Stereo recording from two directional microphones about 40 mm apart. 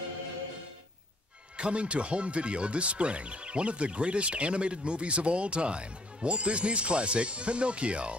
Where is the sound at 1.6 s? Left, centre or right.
Right.